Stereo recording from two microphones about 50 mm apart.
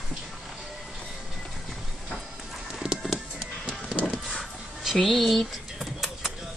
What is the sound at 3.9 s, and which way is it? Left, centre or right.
Music, centre.